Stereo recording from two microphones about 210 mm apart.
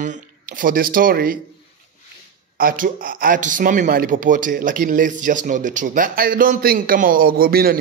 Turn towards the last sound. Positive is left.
turn(degrees=-45)  # may be behind; listen again after turning